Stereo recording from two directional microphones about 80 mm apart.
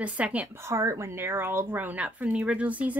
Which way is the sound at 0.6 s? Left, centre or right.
Right.